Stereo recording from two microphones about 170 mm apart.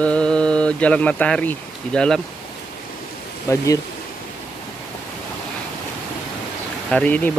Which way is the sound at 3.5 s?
20° left (ahead or behind).